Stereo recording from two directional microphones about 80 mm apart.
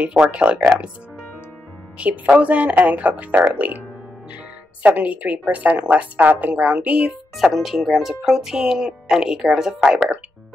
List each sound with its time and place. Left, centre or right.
0.0 s speech: centre
0.4 s a woman's voice: centre
2.0 s speech: centre
4.8 s a woman's voice: centre
7.3 s speech: centre